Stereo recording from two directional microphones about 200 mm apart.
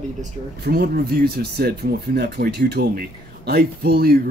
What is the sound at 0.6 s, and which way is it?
Speech, 50° right (ahead or behind).